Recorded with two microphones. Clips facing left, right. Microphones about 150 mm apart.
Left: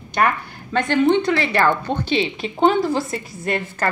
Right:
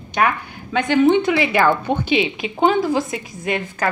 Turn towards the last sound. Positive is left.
turn(degrees=0)  # may be behind; listen again after turning